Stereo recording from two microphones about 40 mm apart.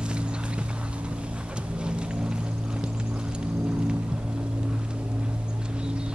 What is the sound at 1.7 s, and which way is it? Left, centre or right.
Vehicle, right.